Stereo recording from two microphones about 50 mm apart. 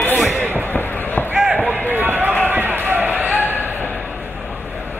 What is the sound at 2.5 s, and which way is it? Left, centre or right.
Basketball bounce, right.